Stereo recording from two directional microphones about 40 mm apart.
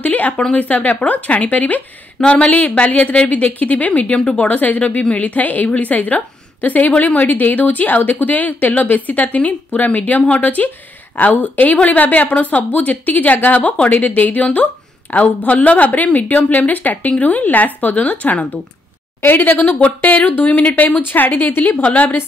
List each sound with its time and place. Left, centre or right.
0.0 s a sound: left
0.6 s a woman's voice: left
2.1 s speech: left
2.4 s a woman's voice: left
4.0 s speech: left
4.5 s a woman's voice: left
19.2 s a woman's voice: left
19.8 s a woman's voice: left
20.4 s a woman's voice: left
20.8 s a woman's voice: left
21.8 s a woman's voice: left